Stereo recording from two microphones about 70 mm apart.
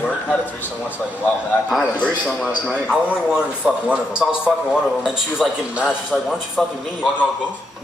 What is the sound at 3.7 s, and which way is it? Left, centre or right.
A man's voice, centre.